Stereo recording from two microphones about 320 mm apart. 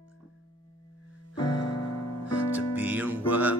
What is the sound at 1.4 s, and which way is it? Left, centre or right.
Music, centre.